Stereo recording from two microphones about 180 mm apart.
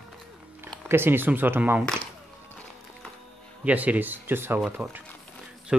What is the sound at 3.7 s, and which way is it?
Speech, 10° right (ahead or behind).